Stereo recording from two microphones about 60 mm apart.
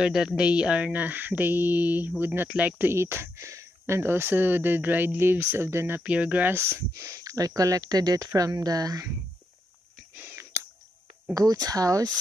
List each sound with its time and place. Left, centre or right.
0.0 s speech: centre; by 2.5 s right
2.8 s speech: right
5.9 s speech: right
6.5 s speech: right
7.2 s speech: right
8.4 s speech: right
10.3 s a sound: right
11.3 s speech: right